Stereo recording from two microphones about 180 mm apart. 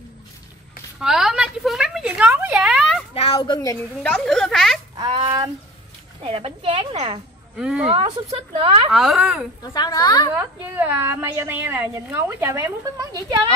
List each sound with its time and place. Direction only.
1.0 s a sound: 5° right (ahead or behind)
3.2 s a woman's voice: 25° left (ahead or behind)
4.0 s speech: 5° left (ahead or behind)
5.2 s speech: 25° right (ahead or behind)
7.5 s speech: 5° right (ahead or behind)
7.9 s speech: 30° right (ahead or behind)
8.9 s speech: centre (ahead or behind)
9.6 s a woman's voice: 20° left (ahead or behind)
10.8 s a woman's voice: 10° right (ahead or behind)